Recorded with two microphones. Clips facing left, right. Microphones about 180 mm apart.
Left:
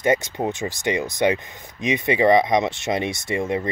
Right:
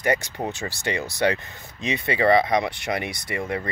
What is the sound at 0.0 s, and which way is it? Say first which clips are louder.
Speech: left 4 dB; 20° left (ahead or behind).